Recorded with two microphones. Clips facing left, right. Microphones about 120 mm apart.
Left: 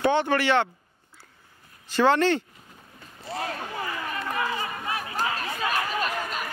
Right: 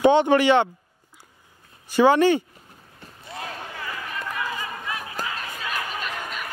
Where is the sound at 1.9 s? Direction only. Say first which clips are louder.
Right 4 dB; 10° right (ahead or behind).